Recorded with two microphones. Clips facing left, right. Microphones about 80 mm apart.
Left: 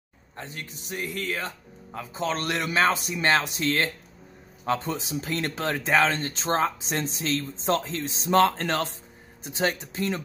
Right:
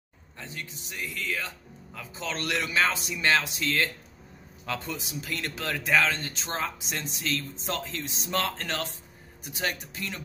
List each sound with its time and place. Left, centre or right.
0.4 s speech: left